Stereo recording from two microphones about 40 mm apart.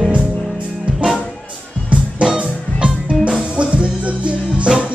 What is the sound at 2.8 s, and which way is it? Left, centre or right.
Music, right.